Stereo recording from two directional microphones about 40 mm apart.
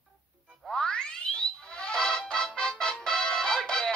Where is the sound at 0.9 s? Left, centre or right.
Left.